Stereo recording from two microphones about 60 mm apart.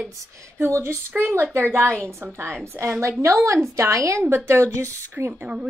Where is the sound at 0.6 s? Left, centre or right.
Right.